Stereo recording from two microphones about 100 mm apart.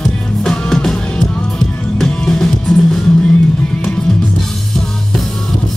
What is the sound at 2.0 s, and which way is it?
Music, 10° left (ahead or behind).